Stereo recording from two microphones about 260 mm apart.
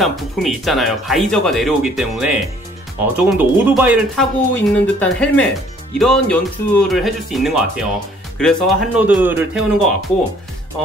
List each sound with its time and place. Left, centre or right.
0.0 s speech: centre